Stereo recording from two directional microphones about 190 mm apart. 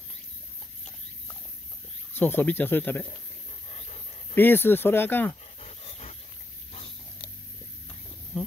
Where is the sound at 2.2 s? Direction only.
10° left (ahead or behind).